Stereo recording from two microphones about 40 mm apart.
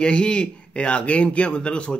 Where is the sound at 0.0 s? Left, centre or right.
Left.